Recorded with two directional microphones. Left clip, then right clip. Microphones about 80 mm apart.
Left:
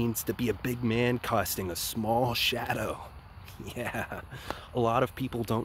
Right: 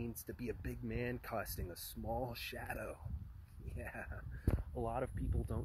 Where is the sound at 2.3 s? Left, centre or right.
Left.